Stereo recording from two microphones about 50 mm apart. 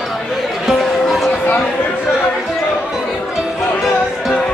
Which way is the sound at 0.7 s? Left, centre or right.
Centre.